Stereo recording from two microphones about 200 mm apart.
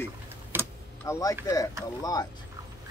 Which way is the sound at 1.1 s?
15° left (ahead or behind).